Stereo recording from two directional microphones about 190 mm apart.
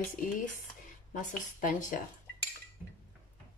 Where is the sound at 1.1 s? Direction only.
45° left (ahead or behind).